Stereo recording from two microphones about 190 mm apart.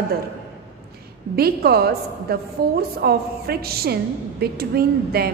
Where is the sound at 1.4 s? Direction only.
55° right (ahead or behind).